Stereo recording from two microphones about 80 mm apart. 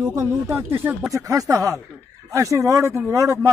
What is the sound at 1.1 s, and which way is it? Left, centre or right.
A man's voice, right.